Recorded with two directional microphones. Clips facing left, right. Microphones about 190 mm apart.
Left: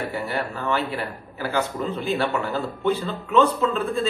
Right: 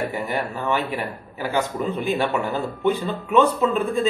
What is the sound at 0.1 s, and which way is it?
Speech, 15° right (ahead or behind).